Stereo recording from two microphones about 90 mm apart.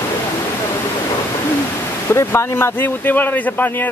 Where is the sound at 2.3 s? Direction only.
25° left (ahead or behind).